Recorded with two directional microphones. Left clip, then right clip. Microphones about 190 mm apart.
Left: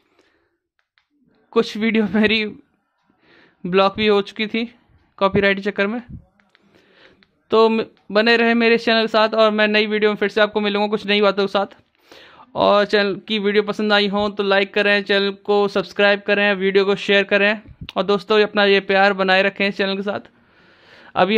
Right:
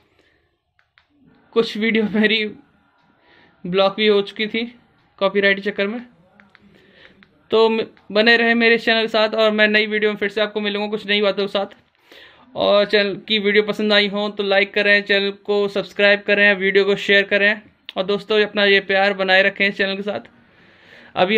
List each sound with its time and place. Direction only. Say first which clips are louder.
1.5 s speech: right 1 dB; 50° left (ahead or behind)
3.6 s speech: even; 50° left (ahead or behind)
21.0 s a sound: even; 35° left (ahead or behind)